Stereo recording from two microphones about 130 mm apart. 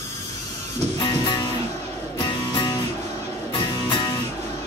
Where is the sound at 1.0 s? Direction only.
35° left (ahead or behind).